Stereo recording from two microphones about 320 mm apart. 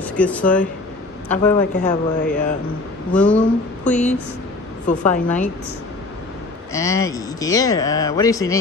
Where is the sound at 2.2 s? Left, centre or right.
Left.